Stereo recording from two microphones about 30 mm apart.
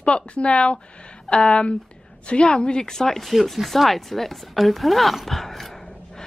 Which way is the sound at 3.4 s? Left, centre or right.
Centre.